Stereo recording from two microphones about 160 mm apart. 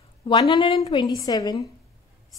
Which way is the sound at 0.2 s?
30° left (ahead or behind).